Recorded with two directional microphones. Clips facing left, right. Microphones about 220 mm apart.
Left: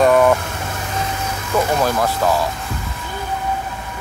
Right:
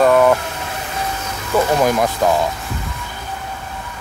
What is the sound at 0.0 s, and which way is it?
Vehicle, centre (ahead or behind).